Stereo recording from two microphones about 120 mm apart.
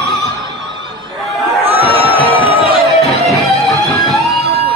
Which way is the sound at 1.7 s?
50° right (ahead or behind).